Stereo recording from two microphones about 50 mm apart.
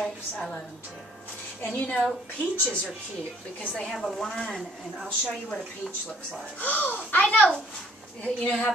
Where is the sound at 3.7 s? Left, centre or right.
Centre.